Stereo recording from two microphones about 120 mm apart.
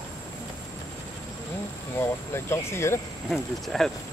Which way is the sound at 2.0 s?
20° left (ahead or behind).